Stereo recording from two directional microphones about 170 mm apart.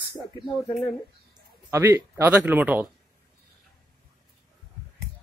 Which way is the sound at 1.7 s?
15° right (ahead or behind).